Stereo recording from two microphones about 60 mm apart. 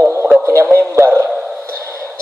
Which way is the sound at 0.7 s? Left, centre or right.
Right.